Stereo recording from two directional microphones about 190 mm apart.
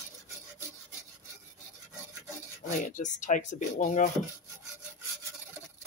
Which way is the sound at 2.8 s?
40° left (ahead or behind).